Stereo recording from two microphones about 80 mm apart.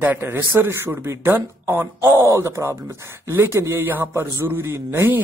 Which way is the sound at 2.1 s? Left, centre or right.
Right.